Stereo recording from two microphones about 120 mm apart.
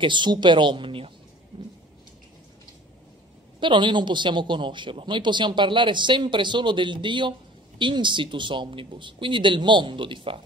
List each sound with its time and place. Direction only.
0.0 s speech: 40° right (ahead or behind)
1.5 s a sound: 50° right (ahead or behind)
3.5 s speech: 40° right (ahead or behind)